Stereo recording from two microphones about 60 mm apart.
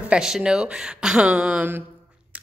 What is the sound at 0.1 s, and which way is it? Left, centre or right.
Speech, centre.